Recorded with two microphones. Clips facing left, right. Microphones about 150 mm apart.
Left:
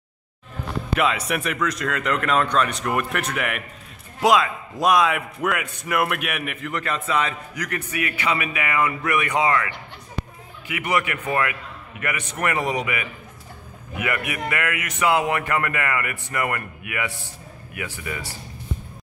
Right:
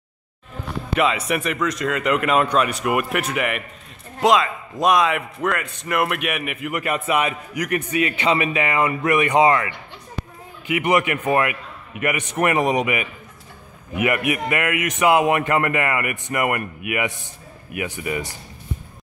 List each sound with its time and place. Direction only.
0.9 s a man's voice: centre (ahead or behind); by 9.7 s 20° right (ahead or behind)
10.7 s a man's voice: 20° right (ahead or behind)